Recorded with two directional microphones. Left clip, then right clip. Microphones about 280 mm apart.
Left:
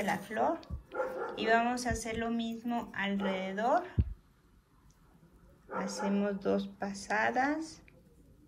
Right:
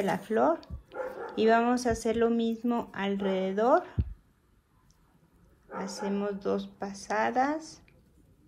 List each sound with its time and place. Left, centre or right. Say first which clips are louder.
0.0 s speech: right 5 dB; centre
5.8 s speech: right 1 dB; centre